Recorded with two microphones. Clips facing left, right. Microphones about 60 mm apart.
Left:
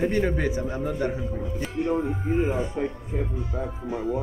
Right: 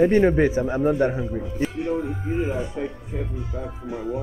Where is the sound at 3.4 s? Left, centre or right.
Left.